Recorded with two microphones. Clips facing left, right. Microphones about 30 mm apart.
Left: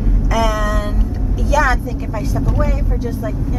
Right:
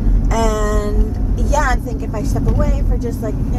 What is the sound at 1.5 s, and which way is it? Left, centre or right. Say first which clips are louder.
Speech: left 2 dB; centre.